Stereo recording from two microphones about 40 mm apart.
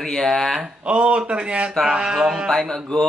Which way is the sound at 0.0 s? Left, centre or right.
Centre.